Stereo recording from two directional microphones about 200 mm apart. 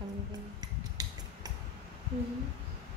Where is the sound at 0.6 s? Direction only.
20° right (ahead or behind).